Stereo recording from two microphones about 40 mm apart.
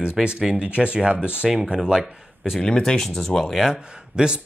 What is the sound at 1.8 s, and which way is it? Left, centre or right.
Speech, centre.